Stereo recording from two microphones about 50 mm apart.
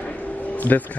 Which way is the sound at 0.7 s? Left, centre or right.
Left.